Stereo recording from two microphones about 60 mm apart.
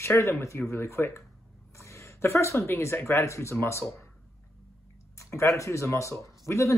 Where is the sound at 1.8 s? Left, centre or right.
Left.